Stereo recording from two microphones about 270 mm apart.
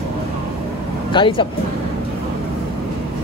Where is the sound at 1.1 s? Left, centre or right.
Centre.